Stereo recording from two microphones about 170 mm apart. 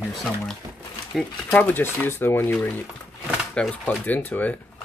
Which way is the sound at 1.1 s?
10° left (ahead or behind).